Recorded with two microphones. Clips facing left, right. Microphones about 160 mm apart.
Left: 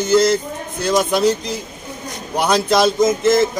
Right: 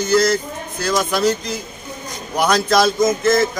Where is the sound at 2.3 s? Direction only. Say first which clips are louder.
Even; 25° left (ahead or behind).